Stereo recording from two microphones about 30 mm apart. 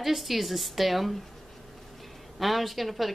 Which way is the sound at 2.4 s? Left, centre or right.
Centre.